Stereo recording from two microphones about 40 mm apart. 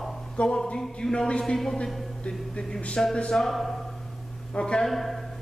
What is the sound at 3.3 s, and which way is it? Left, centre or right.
Speech, centre.